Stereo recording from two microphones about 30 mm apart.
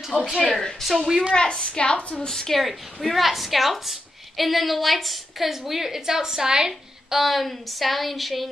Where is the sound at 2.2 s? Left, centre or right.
Centre.